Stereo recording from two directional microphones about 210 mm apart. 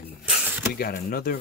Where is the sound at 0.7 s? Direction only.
45° left (ahead or behind).